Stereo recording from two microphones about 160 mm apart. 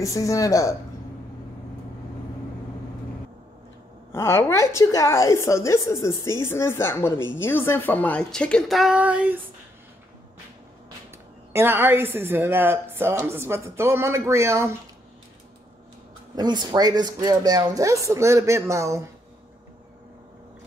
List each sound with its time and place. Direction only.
0.0 s speech: 20° left (ahead or behind)
4.1 s a woman's voice: 15° left (ahead or behind); by 9.4 s 10° right (ahead or behind)
11.5 s a woman's voice: 15° right (ahead or behind)
16.3 s speech: 25° right (ahead or behind)